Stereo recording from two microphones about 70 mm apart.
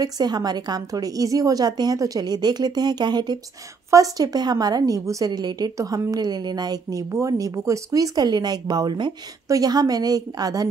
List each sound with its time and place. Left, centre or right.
0.0 s a woman's voice: right
3.9 s speech: right
5.3 s a woman's voice: right
5.8 s speech: right
7.1 s speech: right
9.5 s speech: right